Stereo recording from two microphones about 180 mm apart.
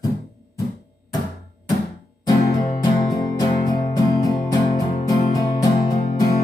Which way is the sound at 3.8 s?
20° left (ahead or behind).